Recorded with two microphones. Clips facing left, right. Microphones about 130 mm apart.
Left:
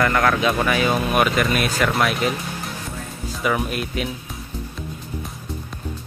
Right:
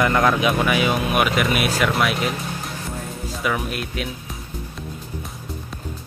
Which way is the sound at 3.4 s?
Centre (ahead or behind).